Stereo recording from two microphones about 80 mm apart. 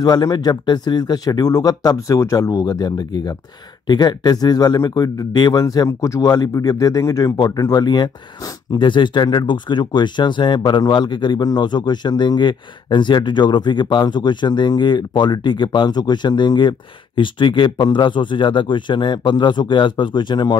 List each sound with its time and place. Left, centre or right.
0.0 s speech: left
5.9 s speech: left
8.7 s speech: left